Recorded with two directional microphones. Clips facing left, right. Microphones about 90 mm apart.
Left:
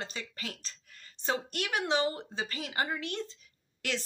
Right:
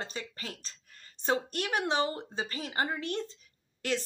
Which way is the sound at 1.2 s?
40° right (ahead or behind).